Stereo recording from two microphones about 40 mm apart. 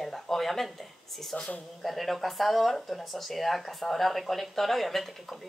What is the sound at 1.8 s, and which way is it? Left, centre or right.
A woman's voice, centre.